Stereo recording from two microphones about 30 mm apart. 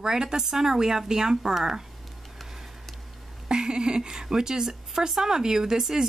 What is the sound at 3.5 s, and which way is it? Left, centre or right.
Speech, right.